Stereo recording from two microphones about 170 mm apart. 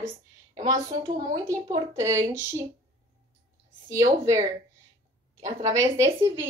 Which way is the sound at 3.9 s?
20° right (ahead or behind).